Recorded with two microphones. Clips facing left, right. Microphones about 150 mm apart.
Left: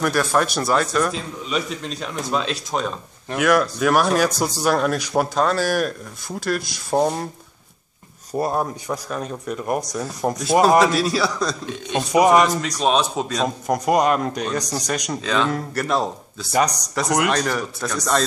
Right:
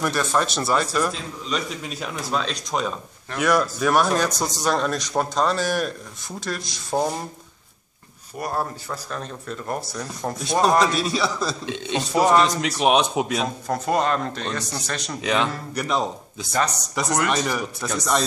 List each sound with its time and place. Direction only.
0.0 s speech: centre (ahead or behind)
8.4 s speech: 20° left (ahead or behind); by 11.5 s centre (ahead or behind)
11.6 s a man's voice: 90° right
12.1 s speech: 15° left (ahead or behind)
12.4 s speech: 15° right (ahead or behind)
13.7 s speech: 15° left (ahead or behind)
15.2 s speech: 20° right (ahead or behind)
15.7 s speech: centre (ahead or behind)
16.5 s speech: 15° left (ahead or behind)
16.9 s speech: centre (ahead or behind)